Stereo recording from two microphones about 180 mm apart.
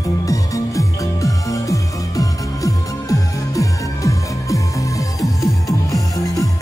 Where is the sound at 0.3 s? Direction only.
20° left (ahead or behind).